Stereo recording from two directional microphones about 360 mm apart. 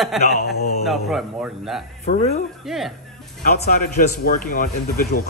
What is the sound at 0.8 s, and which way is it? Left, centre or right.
Speech, centre.